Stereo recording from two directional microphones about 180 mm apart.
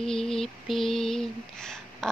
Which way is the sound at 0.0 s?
5° left (ahead or behind).